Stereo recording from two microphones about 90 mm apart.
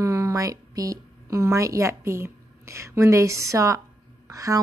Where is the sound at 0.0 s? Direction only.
35° right (ahead or behind).